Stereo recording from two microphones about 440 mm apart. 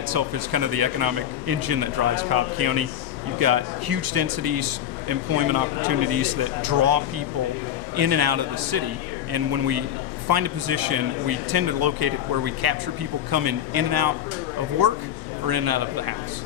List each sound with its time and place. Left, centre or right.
0.1 s a man's voice: right
15.4 s speech: right